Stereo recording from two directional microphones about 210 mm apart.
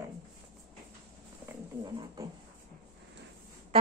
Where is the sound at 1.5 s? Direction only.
15° right (ahead or behind).